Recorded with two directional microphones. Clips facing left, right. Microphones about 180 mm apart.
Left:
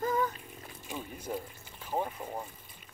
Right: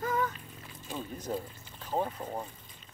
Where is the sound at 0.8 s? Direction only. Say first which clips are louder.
Right 2 dB; 10° left (ahead or behind).